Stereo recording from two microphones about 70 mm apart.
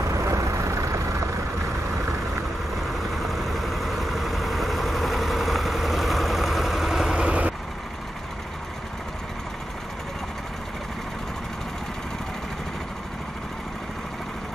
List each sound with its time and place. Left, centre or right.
0.1 s vehicle: right
3.2 s vehicle: centre